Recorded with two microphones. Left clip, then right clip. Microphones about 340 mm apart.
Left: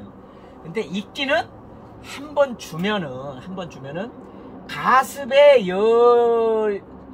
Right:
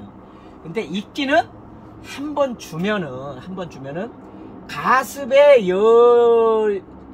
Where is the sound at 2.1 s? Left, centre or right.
Centre.